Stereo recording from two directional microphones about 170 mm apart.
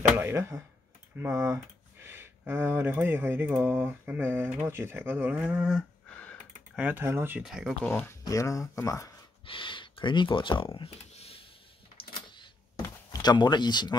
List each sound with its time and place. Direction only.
0.1 s speech: 15° right (ahead or behind); by 6.3 s 5° left (ahead or behind)
6.7 s speech: 10° right (ahead or behind)
7.4 s speech: centre (ahead or behind)
8.2 s speech: 20° left (ahead or behind)
9.5 s speech: 30° left (ahead or behind)
12.4 s a sound: 25° left (ahead or behind)